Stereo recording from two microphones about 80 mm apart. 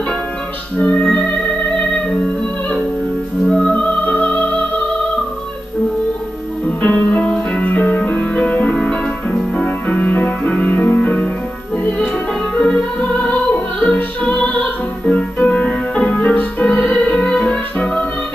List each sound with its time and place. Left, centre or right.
0.7 s music: centre
6.8 s music: centre
12.5 s music: centre